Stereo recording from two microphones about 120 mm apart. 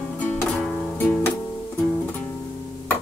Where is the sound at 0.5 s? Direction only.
5° left (ahead or behind).